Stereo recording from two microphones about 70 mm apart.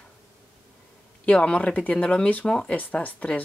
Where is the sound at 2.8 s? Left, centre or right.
Left.